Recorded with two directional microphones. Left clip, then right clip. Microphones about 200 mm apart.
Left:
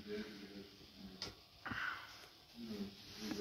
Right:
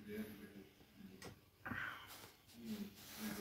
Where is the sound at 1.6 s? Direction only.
30° right (ahead or behind).